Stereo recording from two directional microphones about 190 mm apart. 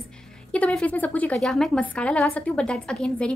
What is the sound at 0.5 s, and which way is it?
A woman's voice, 5° left (ahead or behind).